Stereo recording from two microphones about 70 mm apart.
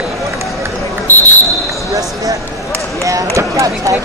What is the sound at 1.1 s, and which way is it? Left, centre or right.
Basketball bounce, left.